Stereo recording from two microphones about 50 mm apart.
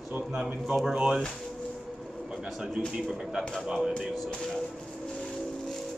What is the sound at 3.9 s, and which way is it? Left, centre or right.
Speech, centre.